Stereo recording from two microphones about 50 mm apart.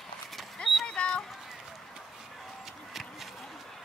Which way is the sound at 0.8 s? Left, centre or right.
Left.